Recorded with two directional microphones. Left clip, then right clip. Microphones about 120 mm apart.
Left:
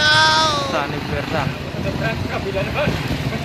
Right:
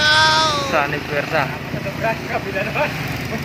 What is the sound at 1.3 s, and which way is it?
Speech, 20° right (ahead or behind).